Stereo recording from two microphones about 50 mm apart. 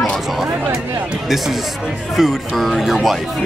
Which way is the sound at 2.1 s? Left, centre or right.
Centre.